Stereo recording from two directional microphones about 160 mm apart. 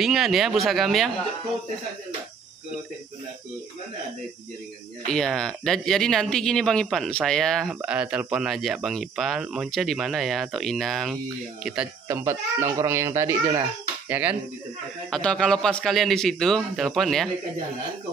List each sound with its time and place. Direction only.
0.0 s speech: centre (ahead or behind)
5.0 s speech: 5° left (ahead or behind)
12.1 s speech: 15° right (ahead or behind)
15.0 s speech: 5° left (ahead or behind)